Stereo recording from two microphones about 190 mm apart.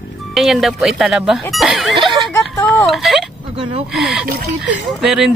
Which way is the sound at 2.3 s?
10° left (ahead or behind).